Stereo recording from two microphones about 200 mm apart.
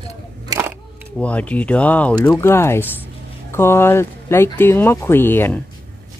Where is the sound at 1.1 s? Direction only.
5° left (ahead or behind).